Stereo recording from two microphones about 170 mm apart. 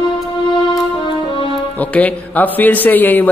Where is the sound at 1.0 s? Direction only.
30° left (ahead or behind).